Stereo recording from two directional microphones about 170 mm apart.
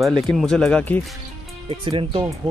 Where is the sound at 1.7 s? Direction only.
30° right (ahead or behind).